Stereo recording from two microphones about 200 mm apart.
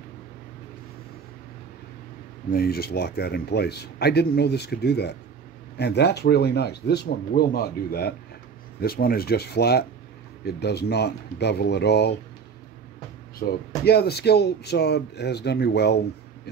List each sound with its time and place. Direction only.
2.5 s speech: 50° left (ahead or behind)
13.4 s speech: 50° left (ahead or behind)